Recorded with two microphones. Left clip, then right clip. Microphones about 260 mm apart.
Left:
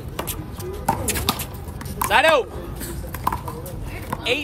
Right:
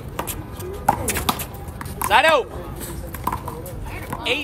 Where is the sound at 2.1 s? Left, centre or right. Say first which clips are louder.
Right 1 dB; centre.